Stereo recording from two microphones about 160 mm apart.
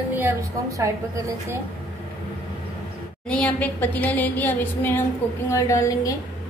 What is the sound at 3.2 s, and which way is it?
A woman's voice, 5° left (ahead or behind).